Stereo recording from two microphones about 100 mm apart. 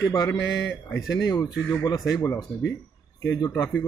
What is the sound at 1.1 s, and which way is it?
Speech, 45° left (ahead or behind).